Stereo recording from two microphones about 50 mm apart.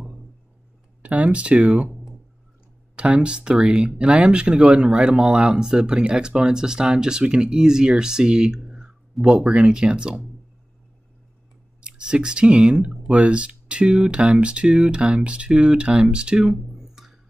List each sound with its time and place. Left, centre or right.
1.0 s speech: right
3.0 s speech: right
11.8 s speech: centre
16.5 s a sound: centre